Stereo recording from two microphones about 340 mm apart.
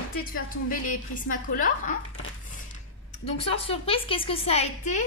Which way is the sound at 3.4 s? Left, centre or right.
Centre.